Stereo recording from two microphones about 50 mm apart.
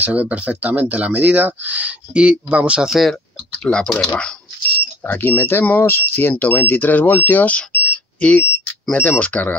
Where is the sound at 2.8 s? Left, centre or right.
Centre.